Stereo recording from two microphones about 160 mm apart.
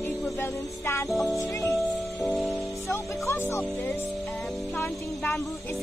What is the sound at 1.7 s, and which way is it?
Music, 5° left (ahead or behind).